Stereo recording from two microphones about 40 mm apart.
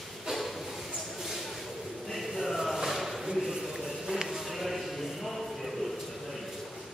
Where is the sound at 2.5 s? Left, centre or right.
Centre.